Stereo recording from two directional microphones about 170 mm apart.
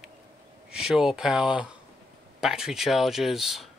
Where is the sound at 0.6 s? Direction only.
5° right (ahead or behind).